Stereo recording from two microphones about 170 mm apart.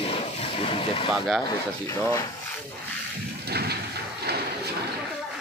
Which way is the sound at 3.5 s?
70° right (ahead or behind).